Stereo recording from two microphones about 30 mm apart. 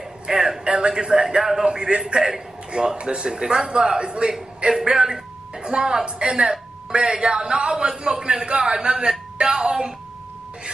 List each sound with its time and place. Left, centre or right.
0.3 s a man's voice: right
3.0 s a man's voice: right